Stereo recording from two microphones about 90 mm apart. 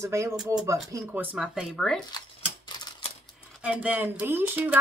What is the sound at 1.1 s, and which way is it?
Speech, 20° right (ahead or behind).